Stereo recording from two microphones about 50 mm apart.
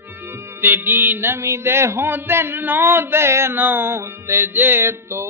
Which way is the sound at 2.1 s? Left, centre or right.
Right.